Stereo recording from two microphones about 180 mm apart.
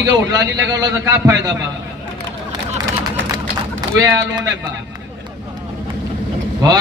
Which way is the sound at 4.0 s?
20° right (ahead or behind).